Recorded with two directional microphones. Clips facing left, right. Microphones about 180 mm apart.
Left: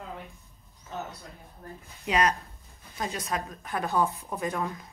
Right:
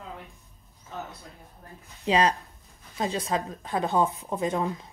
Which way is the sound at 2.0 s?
30° right (ahead or behind).